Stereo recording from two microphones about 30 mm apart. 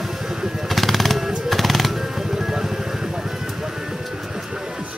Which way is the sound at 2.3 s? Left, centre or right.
Centre.